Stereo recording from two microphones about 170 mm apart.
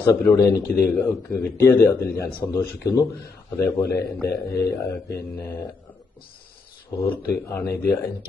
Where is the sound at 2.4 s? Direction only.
15° left (ahead or behind).